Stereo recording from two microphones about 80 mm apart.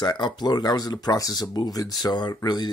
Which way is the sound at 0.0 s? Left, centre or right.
Left.